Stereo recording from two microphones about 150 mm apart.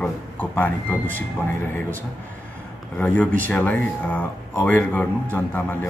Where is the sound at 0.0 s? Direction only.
10° left (ahead or behind).